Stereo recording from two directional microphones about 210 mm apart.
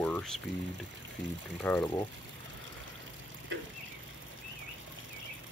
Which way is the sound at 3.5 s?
60° right (ahead or behind).